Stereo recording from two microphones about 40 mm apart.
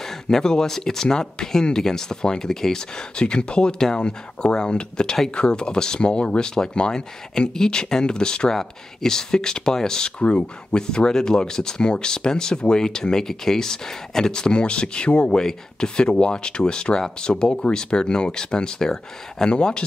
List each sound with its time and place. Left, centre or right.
0.0 s speech: centre; by 15.3 s left
15.3 s speech: centre